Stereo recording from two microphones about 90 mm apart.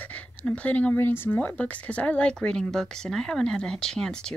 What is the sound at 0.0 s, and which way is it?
A woman's voice, 15° left (ahead or behind).